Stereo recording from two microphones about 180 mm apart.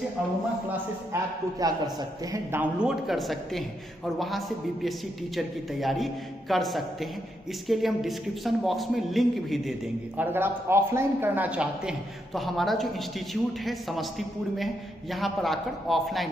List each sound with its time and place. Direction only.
1.6 s a man's voice: 20° right (ahead or behind); by 10.2 s centre (ahead or behind)
10.2 s a man's voice: 10° right (ahead or behind)
15.1 s a man's voice: centre (ahead or behind)